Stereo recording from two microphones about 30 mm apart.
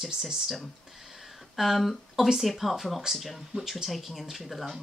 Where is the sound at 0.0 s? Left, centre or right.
Centre.